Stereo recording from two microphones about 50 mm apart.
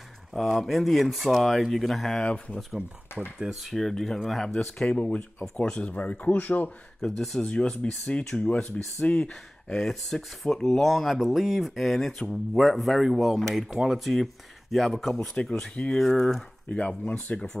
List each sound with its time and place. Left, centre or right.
0.3 s speech: centre
2.2 s speech: centre
3.1 s a sound: left
3.6 s speech: centre
5.9 s speech: left
7.0 s speech: centre
7.4 s speech: left
9.0 s speech: left
9.3 s speech: centre
13.6 s speech: centre
15.7 s speech: left
16.2 s speech: centre
16.6 s speech: left